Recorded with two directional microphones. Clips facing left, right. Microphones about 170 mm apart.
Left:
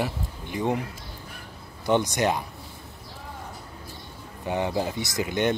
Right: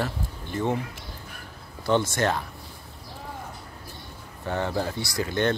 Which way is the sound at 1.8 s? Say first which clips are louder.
Left 1 dB; 15° left (ahead or behind).